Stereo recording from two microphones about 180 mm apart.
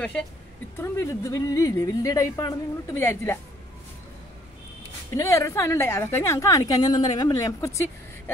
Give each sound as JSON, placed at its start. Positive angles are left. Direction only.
{"t": 0.7, "sound": "a woman's voice", "side_deg": 15}
{"t": 5.1, "sound": "a woman's voice", "side_deg": 15}